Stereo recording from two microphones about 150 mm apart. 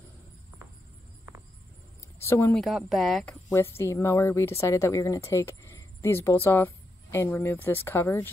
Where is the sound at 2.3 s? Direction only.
15° left (ahead or behind).